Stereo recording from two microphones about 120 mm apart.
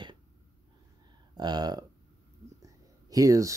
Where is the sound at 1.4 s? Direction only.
35° right (ahead or behind).